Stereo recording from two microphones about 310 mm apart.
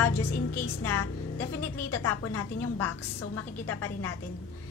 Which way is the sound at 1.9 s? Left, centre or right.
Left.